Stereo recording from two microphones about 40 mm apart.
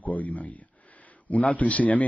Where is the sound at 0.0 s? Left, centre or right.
Left.